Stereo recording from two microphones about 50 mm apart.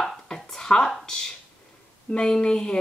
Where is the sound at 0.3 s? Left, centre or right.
Centre.